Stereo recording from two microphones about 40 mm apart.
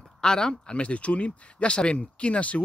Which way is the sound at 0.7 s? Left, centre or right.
Left.